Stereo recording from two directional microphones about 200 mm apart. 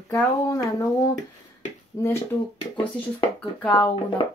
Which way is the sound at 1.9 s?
15° left (ahead or behind).